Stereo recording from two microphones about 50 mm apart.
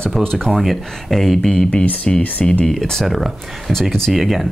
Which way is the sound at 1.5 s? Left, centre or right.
Centre.